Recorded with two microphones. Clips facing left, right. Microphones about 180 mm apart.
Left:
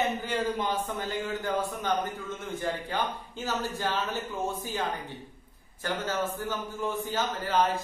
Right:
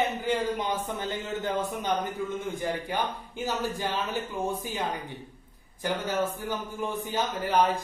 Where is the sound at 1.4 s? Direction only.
20° right (ahead or behind).